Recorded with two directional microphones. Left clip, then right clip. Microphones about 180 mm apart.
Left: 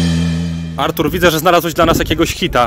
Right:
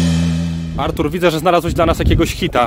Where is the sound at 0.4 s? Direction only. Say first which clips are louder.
Left 3 dB; centre (ahead or behind).